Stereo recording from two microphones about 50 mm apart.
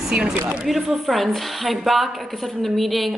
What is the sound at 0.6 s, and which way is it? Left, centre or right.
A woman's voice, centre.